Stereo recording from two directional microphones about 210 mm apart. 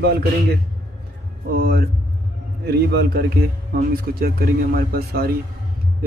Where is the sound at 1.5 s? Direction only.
45° right (ahead or behind).